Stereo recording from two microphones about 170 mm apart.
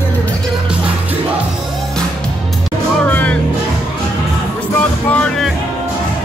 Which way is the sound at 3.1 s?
10° left (ahead or behind).